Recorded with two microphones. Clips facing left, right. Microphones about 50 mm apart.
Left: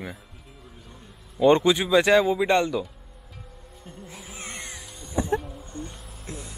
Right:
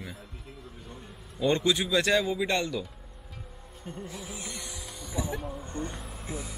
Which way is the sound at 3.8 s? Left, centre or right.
Centre.